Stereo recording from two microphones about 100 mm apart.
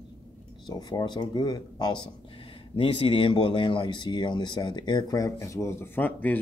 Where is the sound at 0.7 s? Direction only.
45° left (ahead or behind).